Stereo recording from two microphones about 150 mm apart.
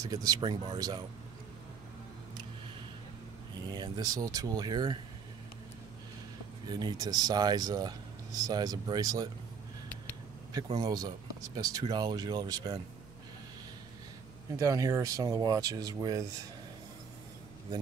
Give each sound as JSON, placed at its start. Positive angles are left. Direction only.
{"t": 0.0, "sound": "speech", "side_deg": -25}
{"t": 3.6, "sound": "speech", "side_deg": -25}
{"t": 6.7, "sound": "speech", "side_deg": -30}
{"t": 10.8, "sound": "speech", "side_deg": -25}
{"t": 14.6, "sound": "speech", "side_deg": -20}